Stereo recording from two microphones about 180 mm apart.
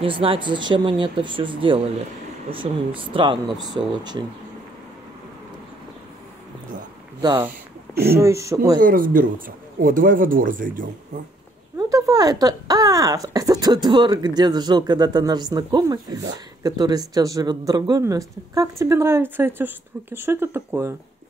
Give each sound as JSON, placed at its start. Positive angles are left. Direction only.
{"t": 0.0, "sound": "speech", "side_deg": -30}
{"t": 3.0, "sound": "speech", "side_deg": -30}
{"t": 8.1, "sound": "speech", "side_deg": -15}
{"t": 8.8, "sound": "speech", "side_deg": -50}
{"t": 11.9, "sound": "speech", "side_deg": -20}